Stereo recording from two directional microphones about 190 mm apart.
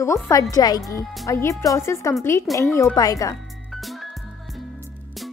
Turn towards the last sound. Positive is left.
turn(degrees=0)  # may be behind; listen again after turning